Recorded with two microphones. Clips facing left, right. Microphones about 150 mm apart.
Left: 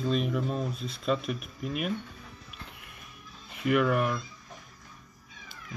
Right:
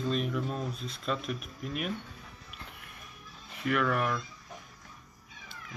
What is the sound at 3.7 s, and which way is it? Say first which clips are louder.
Speech: left 4 dB; 10° left (ahead or behind).